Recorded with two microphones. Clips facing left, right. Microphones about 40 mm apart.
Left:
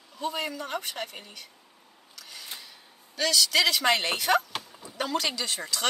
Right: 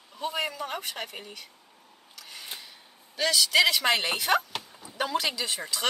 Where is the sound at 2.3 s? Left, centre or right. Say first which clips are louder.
Right 1 dB; centre.